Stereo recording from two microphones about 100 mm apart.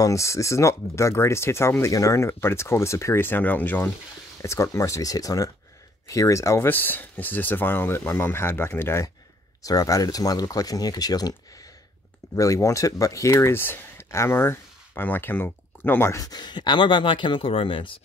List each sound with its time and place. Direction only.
0.0 s speech: 30° left (ahead or behind)
4.4 s speech: 30° left (ahead or behind)
9.6 s speech: 35° left (ahead or behind)
12.4 s speech: 30° left (ahead or behind)
16.2 s speech: 40° left (ahead or behind); by 18.0 s 60° left (ahead or behind)